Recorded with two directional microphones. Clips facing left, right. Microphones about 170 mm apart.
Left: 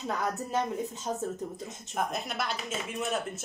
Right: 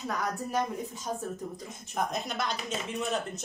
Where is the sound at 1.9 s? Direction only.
5° left (ahead or behind).